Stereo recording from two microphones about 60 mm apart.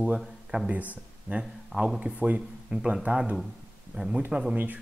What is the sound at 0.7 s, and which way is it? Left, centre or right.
Speech, right.